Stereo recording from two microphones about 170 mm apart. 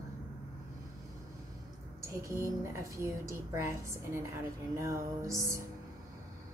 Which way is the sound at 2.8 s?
15° right (ahead or behind).